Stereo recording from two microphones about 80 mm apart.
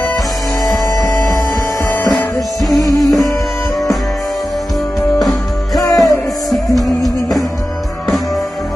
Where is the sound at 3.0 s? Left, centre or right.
Centre.